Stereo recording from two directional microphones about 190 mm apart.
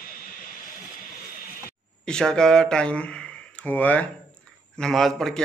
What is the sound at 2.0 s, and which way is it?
A man's voice, 5° left (ahead or behind).